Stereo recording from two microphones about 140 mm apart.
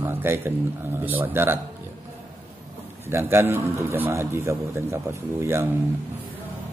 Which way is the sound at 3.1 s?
15° right (ahead or behind).